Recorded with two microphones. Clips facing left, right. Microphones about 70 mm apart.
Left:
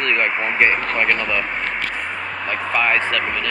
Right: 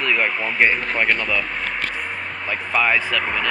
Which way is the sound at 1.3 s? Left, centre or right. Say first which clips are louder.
Left 1 dB; left.